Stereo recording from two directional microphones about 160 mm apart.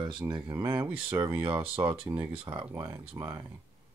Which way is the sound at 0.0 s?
30° right (ahead or behind).